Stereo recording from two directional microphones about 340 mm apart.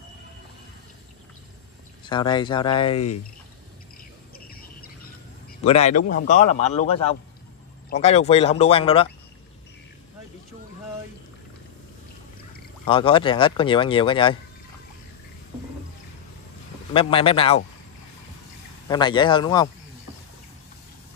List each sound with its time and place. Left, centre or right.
2.0 s speech: centre
4.5 s a sound: left
5.6 s a man's voice: centre
12.8 s speech: centre
16.9 s speech: centre
18.9 s speech: centre